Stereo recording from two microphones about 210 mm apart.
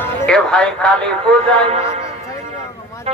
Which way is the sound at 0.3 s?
5° left (ahead or behind).